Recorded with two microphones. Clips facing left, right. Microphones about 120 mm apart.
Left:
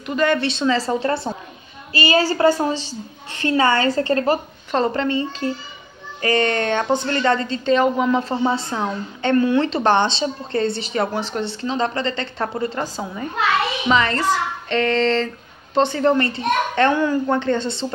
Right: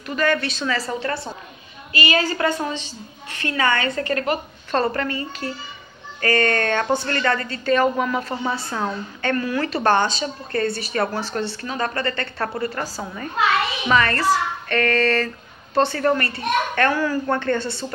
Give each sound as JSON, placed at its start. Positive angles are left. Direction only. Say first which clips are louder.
{"t": 0.0, "sound": "a woman's voice", "louder": "left 3 dB", "side_deg": 20}
{"t": 4.6, "sound": "a woman's voice", "louder": "left 2 dB", "side_deg": 20}